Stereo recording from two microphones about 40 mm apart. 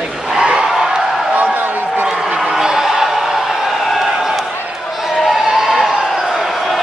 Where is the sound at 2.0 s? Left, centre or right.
Centre.